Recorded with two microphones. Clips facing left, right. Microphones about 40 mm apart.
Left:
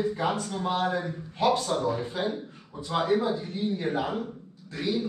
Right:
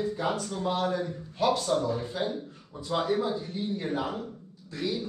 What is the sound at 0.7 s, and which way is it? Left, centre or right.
A man's voice, left.